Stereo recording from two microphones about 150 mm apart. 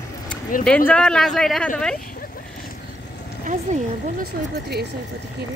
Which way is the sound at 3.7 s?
55° right (ahead or behind).